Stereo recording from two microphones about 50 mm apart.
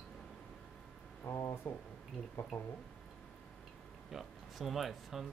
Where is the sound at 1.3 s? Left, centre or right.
Left.